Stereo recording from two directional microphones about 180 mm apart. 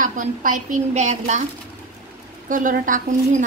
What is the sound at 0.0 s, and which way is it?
A woman's voice, 45° right (ahead or behind).